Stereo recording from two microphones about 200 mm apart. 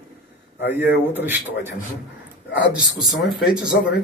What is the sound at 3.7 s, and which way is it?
Speech, 55° left (ahead or behind).